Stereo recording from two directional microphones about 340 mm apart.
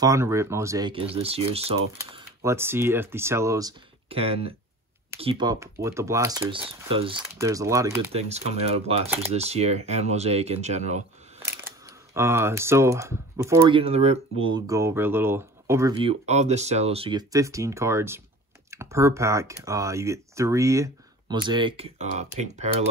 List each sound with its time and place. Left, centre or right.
0.0 s speech: centre
12.1 s speech: centre